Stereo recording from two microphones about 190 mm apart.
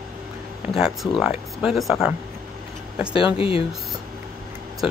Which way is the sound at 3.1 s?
30° left (ahead or behind).